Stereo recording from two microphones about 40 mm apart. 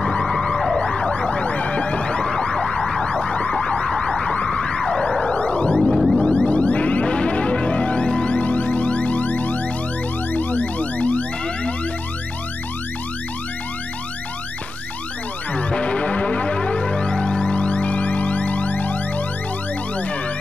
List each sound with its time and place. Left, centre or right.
0.2 s siren: centre
0.7 s emergency vehicle: centre
1.3 s emergency vehicle: left
2.7 s emergency vehicle: centre
3.1 s emergency vehicle: left
3.8 s emergency vehicle: centre
4.5 s siren: centre
5.3 s car alarm: left
5.8 s music: centre
6.3 s music: left
15.5 s music: left
16.5 s siren: left